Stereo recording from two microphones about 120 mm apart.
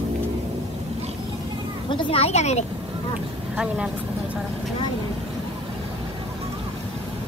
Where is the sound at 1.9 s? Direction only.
45° left (ahead or behind); by 2.6 s 65° left (ahead or behind).